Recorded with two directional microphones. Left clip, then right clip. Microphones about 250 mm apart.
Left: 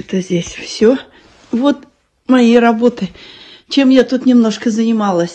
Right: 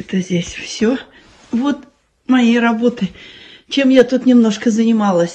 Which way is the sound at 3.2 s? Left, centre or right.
Centre.